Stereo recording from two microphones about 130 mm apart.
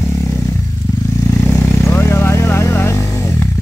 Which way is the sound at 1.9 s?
20° left (ahead or behind).